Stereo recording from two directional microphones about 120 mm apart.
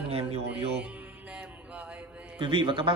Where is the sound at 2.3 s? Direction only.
40° right (ahead or behind).